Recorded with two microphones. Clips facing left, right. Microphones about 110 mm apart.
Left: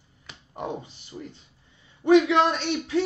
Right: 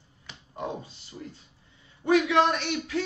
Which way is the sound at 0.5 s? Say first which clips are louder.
Left 2 dB; 20° left (ahead or behind).